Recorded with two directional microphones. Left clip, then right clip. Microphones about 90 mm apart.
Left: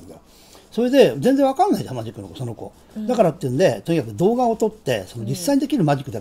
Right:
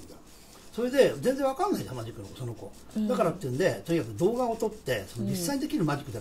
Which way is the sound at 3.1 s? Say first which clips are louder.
Left 10 dB; 45° left (ahead or behind).